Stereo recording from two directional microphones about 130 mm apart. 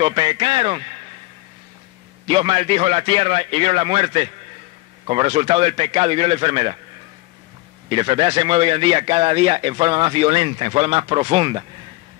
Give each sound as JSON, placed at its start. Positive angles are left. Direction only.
{"t": 0.0, "sound": "speech", "side_deg": -40}
{"t": 2.2, "sound": "speech", "side_deg": -45}
{"t": 7.9, "sound": "speech", "side_deg": -40}